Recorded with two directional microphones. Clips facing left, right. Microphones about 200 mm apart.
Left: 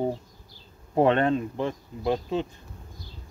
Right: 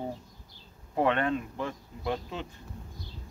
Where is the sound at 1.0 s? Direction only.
30° left (ahead or behind).